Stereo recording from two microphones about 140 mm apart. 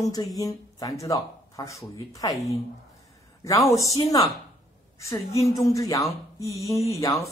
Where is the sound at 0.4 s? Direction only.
25° left (ahead or behind).